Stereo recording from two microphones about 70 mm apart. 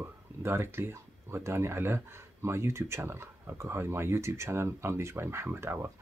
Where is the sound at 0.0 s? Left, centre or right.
Right.